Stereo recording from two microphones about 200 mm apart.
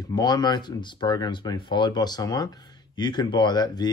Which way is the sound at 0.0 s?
20° left (ahead or behind).